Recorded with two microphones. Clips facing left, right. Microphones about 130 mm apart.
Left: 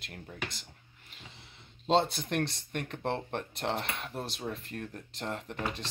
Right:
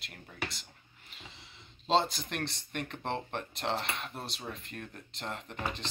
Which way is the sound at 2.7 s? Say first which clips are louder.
Left 2 dB; 50° left (ahead or behind).